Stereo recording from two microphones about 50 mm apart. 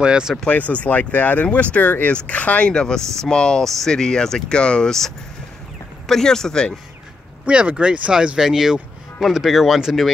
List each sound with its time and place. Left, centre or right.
0.0 s speech: centre
0.5 s speech: left
2.7 s speech: centre
6.0 s speech: centre
7.4 s speech: right